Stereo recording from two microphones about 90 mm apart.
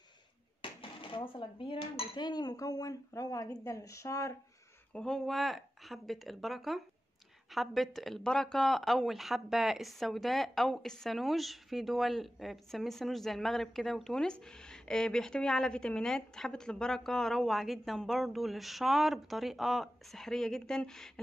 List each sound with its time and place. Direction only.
0.6 s dishes: 75° left (ahead or behind)
2.1 s speech: 50° left (ahead or behind); by 4.4 s 35° left (ahead or behind)
4.9 s speech: 5° left (ahead or behind)